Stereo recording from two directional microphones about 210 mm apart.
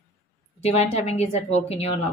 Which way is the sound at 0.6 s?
30° left (ahead or behind).